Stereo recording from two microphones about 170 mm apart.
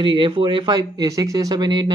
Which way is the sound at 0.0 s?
30° right (ahead or behind).